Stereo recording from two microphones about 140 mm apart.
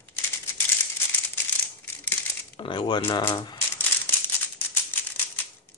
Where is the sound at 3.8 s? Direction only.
15° left (ahead or behind).